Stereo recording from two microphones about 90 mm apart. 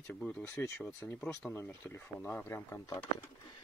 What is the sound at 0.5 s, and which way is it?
Speech, 30° left (ahead or behind).